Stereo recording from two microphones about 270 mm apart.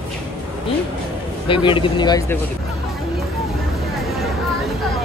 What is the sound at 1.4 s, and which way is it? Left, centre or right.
Speech, centre.